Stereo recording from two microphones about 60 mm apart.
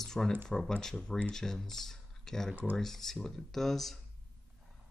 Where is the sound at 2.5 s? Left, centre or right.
Right.